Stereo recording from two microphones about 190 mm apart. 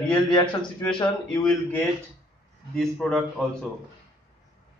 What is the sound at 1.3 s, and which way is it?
Speech, 15° left (ahead or behind).